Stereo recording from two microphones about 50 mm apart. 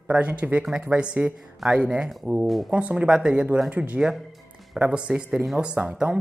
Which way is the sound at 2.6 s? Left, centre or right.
Right.